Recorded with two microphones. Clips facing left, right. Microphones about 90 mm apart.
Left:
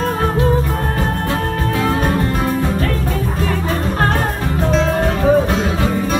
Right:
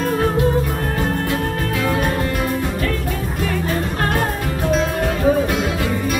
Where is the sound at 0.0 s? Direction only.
40° left (ahead or behind).